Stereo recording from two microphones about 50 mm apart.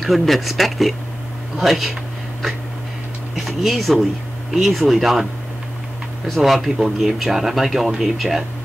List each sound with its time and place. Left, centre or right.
0.0 s speech: centre
3.3 s speech: centre
6.3 s speech: centre